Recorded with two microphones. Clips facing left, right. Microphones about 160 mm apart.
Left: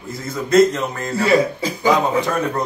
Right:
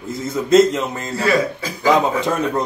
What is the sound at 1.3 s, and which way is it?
Speech, 25° left (ahead or behind).